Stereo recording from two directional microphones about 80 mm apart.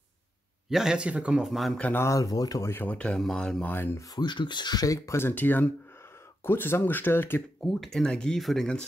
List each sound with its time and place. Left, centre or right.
0.7 s speech: centre
1.4 s speech: centre
2.0 s speech: left
2.6 s speech: left
2.9 s speech: centre
3.6 s speech: left
4.1 s speech: left
5.2 s speech: left
7.6 s speech: centre